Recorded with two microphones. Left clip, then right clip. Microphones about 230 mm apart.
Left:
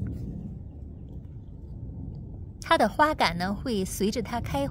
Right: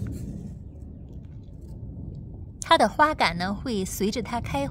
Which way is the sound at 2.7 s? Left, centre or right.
Centre.